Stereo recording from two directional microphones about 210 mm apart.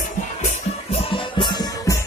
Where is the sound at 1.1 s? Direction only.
20° left (ahead or behind).